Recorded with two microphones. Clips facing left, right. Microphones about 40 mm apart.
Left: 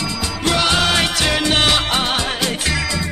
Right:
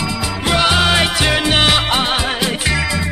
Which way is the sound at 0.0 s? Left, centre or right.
Centre.